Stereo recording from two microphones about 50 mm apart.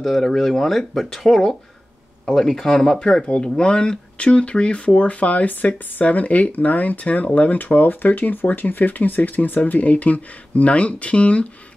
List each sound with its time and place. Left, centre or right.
0.0 s speech: centre; by 11.4 s left